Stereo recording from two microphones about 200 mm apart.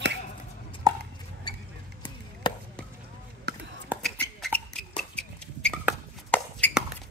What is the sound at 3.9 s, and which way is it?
Beatboxing, centre (ahead or behind).